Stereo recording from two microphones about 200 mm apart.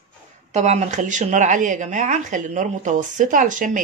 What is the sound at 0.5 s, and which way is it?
Speech, 35° right (ahead or behind).